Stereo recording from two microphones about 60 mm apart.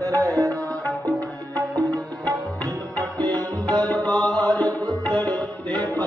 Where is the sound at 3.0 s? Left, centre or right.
Right.